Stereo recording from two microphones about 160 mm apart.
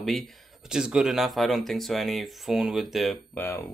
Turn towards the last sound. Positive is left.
turn(degrees=15)  # may be behind; listen again after turning